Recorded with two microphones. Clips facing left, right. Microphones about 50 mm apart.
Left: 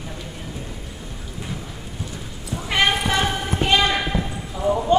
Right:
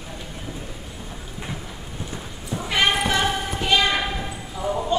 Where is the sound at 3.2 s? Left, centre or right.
Left.